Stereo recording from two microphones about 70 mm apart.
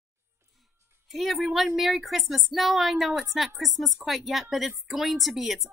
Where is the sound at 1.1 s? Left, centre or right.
Centre.